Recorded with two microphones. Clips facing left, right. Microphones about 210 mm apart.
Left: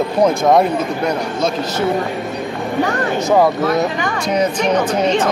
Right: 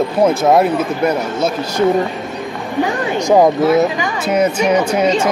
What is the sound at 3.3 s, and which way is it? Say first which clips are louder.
Speech: right 3 dB; 20° right (ahead or behind).